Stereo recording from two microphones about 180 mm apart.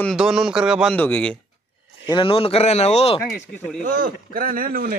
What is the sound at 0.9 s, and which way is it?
Speech, 10° left (ahead or behind).